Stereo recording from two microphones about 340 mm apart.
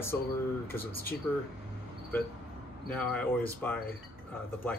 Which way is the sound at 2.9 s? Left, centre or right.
Centre.